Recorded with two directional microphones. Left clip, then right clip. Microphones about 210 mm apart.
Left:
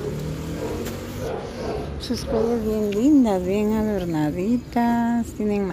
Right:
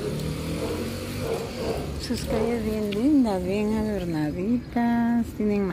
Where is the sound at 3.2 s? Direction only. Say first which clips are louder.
Left 4 dB; 20° left (ahead or behind); by 5.7 s centre (ahead or behind).